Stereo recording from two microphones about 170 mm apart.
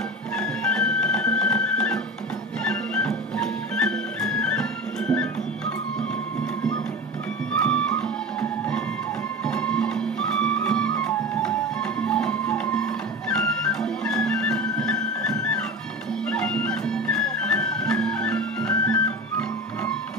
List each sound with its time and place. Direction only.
0.4 s music: 5° left (ahead or behind)
7.6 s music: 5° left (ahead or behind)